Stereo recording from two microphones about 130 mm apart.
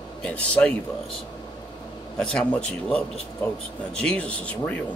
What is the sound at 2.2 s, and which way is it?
Speech, 5° left (ahead or behind).